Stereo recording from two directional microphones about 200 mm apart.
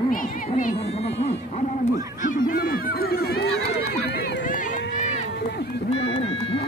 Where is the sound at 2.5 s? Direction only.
45° left (ahead or behind).